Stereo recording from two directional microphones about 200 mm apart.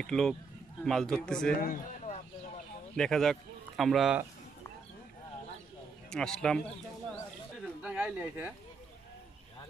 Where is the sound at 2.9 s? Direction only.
5° left (ahead or behind).